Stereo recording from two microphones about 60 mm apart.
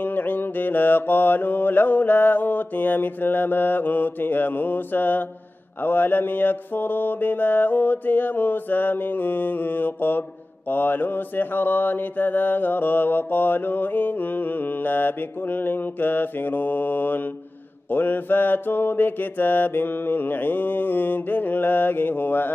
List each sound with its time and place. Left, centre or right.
0.0 s mantra: left